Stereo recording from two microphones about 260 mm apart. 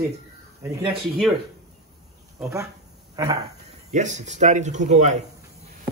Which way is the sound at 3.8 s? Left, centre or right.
Right.